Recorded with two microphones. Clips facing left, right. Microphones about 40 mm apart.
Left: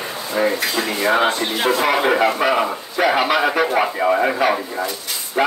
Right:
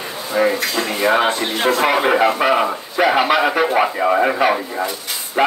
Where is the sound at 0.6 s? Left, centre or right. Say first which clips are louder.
Even; centre.